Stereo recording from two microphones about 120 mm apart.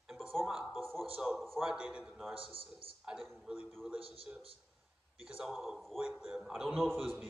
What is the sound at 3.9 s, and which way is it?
Speech, 50° right (ahead or behind).